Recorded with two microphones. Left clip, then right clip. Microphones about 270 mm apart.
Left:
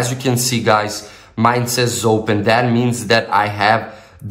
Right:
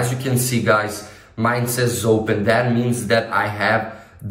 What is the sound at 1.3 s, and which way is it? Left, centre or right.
Speech, centre.